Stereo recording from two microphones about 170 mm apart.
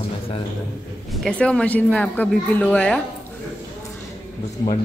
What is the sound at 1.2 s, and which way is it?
Speech, 5° left (ahead or behind).